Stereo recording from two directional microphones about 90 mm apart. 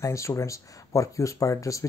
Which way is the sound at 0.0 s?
35° left (ahead or behind).